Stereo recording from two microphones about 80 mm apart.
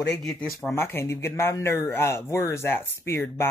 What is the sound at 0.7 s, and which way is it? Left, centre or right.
Speech, left.